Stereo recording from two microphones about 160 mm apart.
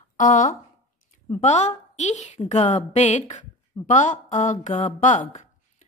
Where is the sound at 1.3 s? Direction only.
45° left (ahead or behind).